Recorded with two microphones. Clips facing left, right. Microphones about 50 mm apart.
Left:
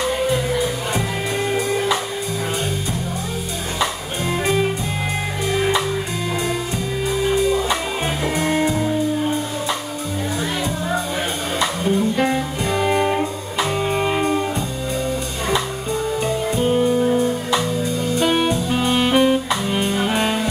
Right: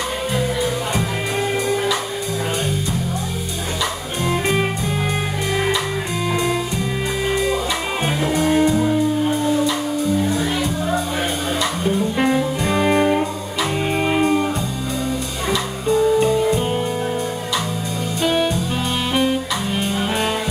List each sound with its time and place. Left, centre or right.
12.6 s music: centre
16.7 s music: centre
18.2 s music: centre